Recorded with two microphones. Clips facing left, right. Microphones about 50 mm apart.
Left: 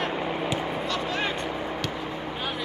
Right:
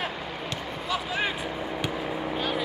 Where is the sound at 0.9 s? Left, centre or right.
Centre.